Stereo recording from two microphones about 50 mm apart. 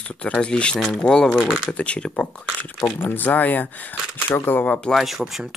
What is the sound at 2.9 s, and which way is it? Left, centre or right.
Speech, left.